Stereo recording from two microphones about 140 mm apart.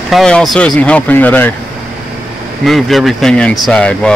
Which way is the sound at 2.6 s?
Centre (ahead or behind).